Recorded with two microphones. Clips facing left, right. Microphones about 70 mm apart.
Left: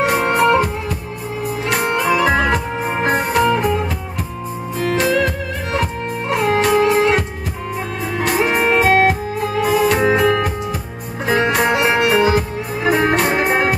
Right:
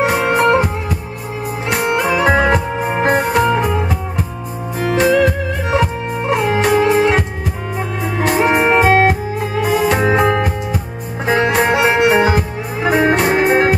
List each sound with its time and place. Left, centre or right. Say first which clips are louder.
0.0 s music: right 1 dB; centre
8.3 s music: right 3 dB; centre
11.2 s music: right 2 dB; centre